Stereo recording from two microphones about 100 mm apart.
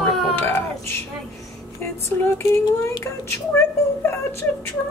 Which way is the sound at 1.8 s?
25° left (ahead or behind).